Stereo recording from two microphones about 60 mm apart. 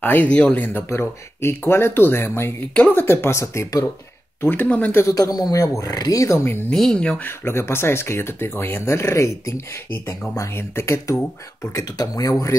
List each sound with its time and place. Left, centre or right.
0.0 s speech: left
0.3 s speech: centre
0.8 s speech: left
2.7 s speech: left
3.0 s speech: left
3.3 s speech: left
4.4 s speech: left
5.1 s a man's voice: left
5.6 s speech: left
6.3 s speech: left
6.7 s speech: centre
7.2 s speech: left
11.7 s speech: left